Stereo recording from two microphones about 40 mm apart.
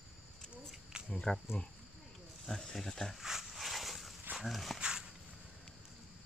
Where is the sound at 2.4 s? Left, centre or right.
Centre.